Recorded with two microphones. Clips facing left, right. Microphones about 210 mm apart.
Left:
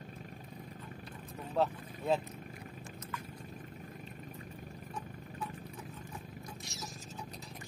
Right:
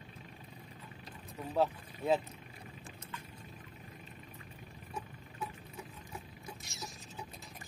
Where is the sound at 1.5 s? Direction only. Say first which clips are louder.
Even; centre (ahead or behind).